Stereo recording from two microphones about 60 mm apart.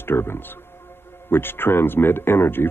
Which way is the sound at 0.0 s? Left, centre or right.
Left.